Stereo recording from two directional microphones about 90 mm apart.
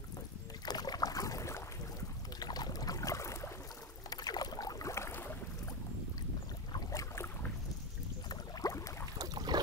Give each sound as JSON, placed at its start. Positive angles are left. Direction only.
{"t": 0.7, "sound": "boat", "side_deg": 50}
{"t": 2.4, "sound": "boat", "side_deg": 50}
{"t": 4.1, "sound": "boat", "side_deg": 50}
{"t": 6.7, "sound": "boat", "side_deg": 40}
{"t": 8.3, "sound": "a sound", "side_deg": 40}
{"t": 9.2, "sound": "boat", "side_deg": -45}